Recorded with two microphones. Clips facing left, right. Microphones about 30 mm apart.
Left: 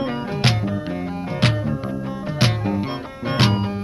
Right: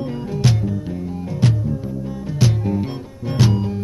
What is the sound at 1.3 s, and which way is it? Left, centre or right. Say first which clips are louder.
Music: even; left.